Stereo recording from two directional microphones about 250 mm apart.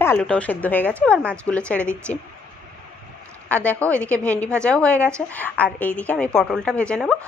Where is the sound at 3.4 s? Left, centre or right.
Centre.